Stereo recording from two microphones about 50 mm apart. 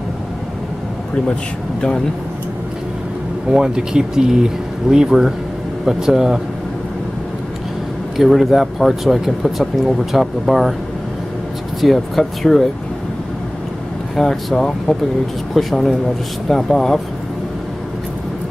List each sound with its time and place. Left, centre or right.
1.3 s speech: centre
3.4 s speech: centre
8.2 s speech: centre
11.8 s speech: centre
14.1 s speech: centre